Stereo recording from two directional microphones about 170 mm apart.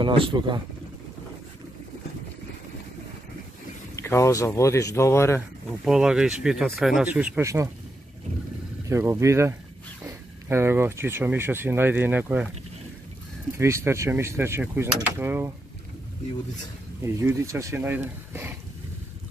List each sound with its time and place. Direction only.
0.0 s speech: 30° right (ahead or behind)
3.9 s speech: 15° left (ahead or behind)
5.9 s speech: 5° right (ahead or behind)
8.8 s speech: 15° right (ahead or behind)
13.6 s speech: 15° right (ahead or behind)
17.0 s speech: 15° right (ahead or behind)